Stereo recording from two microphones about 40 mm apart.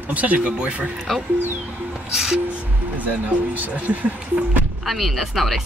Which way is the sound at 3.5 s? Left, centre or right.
Right.